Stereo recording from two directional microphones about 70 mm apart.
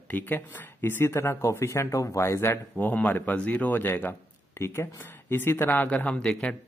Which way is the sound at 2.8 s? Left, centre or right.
Left.